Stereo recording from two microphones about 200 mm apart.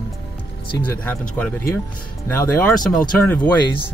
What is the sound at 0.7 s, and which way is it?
Speech, 10° left (ahead or behind).